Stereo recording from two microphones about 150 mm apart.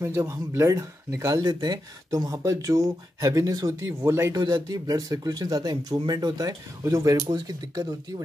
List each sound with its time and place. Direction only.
0.0 s speech: 15° right (ahead or behind)